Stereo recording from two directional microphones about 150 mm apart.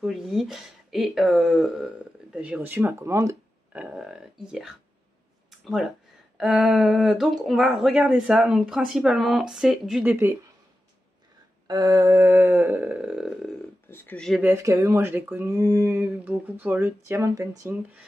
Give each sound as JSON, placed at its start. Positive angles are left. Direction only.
{"t": 0.0, "sound": "speech", "side_deg": 0}
{"t": 6.3, "sound": "speech", "side_deg": 0}
{"t": 11.6, "sound": "speech", "side_deg": -25}
{"t": 13.8, "sound": "speech", "side_deg": 15}
{"t": 14.4, "sound": "speech", "side_deg": -20}